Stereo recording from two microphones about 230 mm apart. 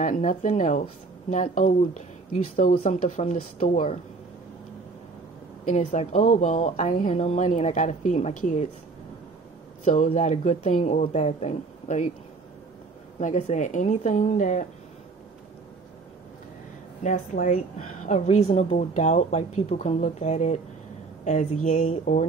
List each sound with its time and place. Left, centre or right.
0.0 s speech: left
5.7 s speech: left
9.8 s speech: left
13.2 s speech: left
17.0 s a woman's voice: left